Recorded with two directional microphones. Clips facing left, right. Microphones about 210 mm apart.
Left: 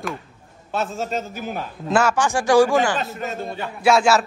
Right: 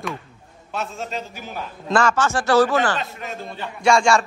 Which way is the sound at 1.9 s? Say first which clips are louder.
Even; 10° left (ahead or behind).